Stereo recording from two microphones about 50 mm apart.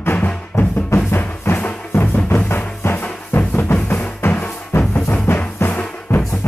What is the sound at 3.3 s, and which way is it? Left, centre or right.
Music, left.